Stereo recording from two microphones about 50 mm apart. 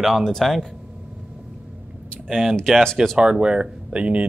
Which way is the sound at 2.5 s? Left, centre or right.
Centre.